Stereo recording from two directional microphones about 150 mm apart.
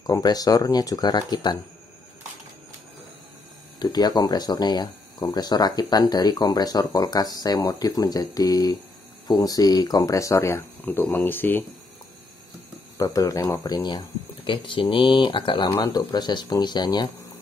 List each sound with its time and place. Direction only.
0.0 s speech: 25° left (ahead or behind)
3.8 s speech: 25° left (ahead or behind)
12.9 s speech: 20° left (ahead or behind)
13.8 s speech: 30° left (ahead or behind)